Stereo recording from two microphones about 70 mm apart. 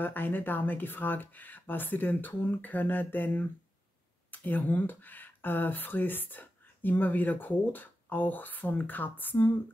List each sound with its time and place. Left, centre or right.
0.0 s speech: left